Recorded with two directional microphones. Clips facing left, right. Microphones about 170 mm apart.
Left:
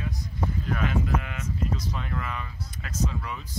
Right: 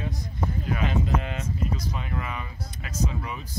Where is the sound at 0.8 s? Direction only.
25° right (ahead or behind).